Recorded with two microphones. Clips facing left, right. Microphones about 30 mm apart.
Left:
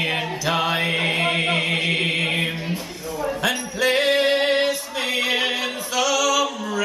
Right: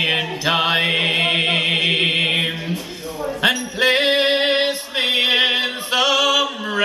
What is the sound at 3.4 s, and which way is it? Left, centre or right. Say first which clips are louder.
Music: right 7 dB; right.